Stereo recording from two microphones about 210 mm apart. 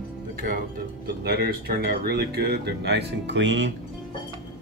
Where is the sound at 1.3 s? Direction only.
50° right (ahead or behind).